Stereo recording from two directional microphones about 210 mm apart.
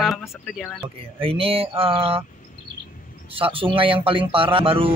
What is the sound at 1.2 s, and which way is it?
Speech, 25° right (ahead or behind).